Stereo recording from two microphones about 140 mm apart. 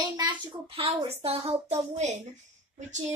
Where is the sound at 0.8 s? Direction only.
45° right (ahead or behind).